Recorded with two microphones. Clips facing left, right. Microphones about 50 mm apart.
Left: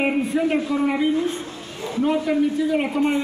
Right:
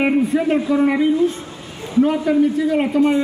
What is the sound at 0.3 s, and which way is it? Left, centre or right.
Speech, right.